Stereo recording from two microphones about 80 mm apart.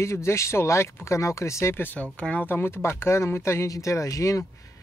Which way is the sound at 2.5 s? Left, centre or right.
Left.